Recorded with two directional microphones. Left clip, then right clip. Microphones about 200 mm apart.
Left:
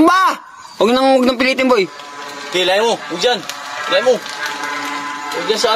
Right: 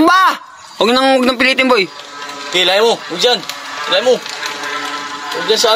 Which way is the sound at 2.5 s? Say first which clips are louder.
Right 3 dB; 20° right (ahead or behind).